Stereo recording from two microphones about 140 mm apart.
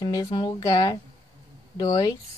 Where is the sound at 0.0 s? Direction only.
30° left (ahead or behind).